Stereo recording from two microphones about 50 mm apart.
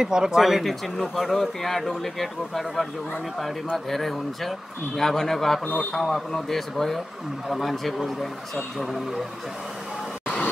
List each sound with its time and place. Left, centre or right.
0.0 s speech: centre